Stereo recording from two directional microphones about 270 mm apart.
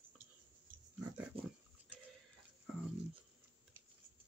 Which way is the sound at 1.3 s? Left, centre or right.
Centre.